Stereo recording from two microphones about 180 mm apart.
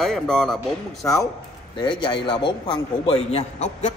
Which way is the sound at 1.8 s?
25° left (ahead or behind).